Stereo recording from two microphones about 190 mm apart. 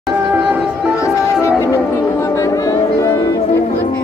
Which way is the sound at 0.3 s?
10° right (ahead or behind).